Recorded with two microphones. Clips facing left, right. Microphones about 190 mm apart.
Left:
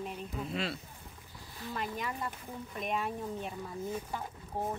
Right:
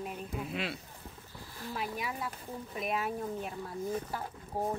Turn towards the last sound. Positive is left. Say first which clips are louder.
# right 2 dB
turn(degrees=-10)  # may be behind; listen again after turning